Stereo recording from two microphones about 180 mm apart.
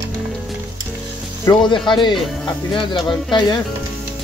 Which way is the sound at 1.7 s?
25° left (ahead or behind).